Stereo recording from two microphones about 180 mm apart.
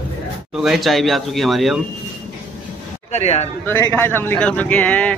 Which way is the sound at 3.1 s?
35° left (ahead or behind).